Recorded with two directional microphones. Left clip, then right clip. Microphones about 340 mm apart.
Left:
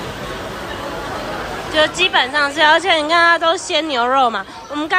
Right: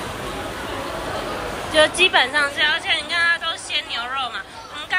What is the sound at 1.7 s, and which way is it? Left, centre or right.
A woman's voice, centre.